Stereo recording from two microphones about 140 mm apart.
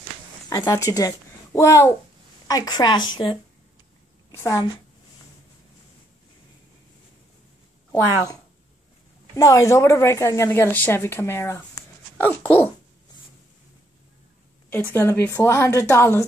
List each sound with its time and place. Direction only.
0.5 s a woman's voice: 25° left (ahead or behind)
4.3 s a woman's voice: 20° left (ahead or behind)
9.3 s a woman's voice: 20° left (ahead or behind)
14.9 s a woman's voice: 15° left (ahead or behind)